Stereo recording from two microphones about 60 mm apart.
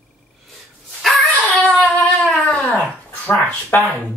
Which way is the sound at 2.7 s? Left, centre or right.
Left.